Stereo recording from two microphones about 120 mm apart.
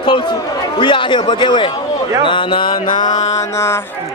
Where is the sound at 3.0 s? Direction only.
30° left (ahead or behind).